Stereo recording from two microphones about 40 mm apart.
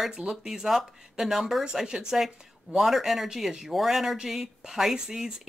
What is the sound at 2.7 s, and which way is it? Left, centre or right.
Speech, centre.